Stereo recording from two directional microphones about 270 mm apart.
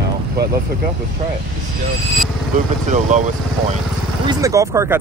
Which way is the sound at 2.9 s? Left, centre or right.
Right.